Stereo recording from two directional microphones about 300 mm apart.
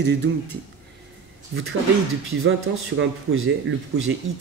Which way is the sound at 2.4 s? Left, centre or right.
Right.